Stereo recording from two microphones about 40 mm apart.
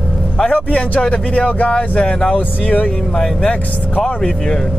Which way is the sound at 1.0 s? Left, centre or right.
Left.